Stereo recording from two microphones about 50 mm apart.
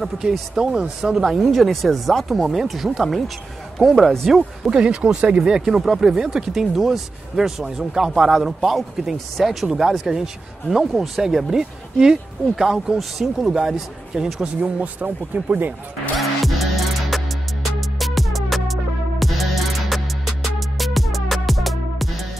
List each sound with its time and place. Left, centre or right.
0.6 s speech: centre
1.2 s speech: centre
4.6 s speech: centre
5.3 s speech: centre
14.6 s speech: right
16.2 s music: centre